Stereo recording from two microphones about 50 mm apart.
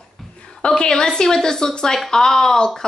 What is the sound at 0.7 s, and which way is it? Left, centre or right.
A woman's voice, centre.